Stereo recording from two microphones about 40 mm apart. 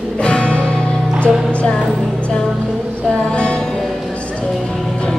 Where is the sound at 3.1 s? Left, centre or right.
Left.